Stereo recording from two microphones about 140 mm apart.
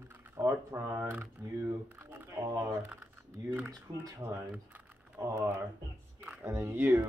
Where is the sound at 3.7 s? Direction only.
25° right (ahead or behind).